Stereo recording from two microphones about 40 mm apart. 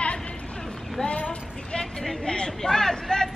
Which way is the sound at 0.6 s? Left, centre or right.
Centre.